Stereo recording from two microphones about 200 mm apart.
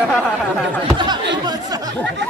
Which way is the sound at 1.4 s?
20° right (ahead or behind).